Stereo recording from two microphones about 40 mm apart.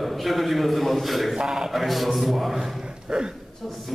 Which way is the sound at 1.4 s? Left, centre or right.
Centre.